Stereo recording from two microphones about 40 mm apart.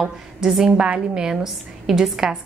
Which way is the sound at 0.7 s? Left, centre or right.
Right.